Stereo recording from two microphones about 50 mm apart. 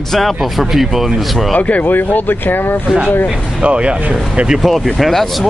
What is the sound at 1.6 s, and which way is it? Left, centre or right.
Speech, left.